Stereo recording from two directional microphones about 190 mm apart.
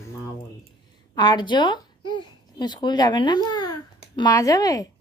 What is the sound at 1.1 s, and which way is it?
A child's voice, 25° left (ahead or behind).